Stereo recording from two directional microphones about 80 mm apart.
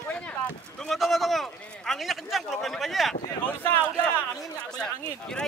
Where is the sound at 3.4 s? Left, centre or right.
Centre.